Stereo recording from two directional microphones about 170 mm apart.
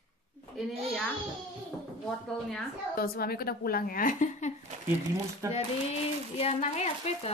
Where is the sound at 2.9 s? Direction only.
65° left (ahead or behind).